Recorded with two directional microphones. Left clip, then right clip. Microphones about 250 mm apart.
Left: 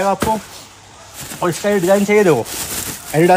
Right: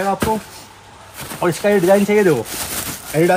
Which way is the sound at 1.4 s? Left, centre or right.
Centre.